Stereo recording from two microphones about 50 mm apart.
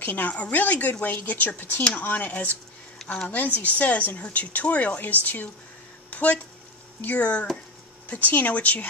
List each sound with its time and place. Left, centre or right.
0.0 s speech: left
6.0 s a sound: left
7.0 s speech: left